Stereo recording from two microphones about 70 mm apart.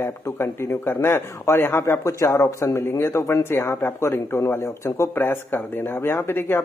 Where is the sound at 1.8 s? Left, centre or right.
Left.